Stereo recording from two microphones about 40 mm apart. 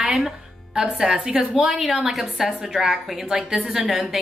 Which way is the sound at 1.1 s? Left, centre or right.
Right.